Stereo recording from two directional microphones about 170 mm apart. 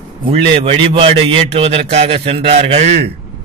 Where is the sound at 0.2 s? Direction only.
35° right (ahead or behind).